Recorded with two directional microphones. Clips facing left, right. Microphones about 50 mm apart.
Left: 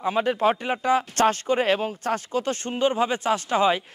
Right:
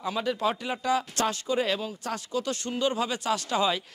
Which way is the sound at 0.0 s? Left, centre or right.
Left.